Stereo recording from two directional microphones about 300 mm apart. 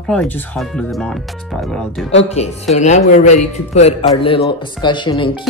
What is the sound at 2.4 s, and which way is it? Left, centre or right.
Speech, left.